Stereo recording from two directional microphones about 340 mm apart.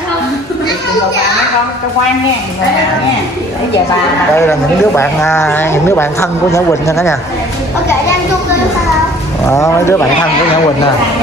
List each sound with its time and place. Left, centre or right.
4.4 s speech: centre
9.4 s speech: centre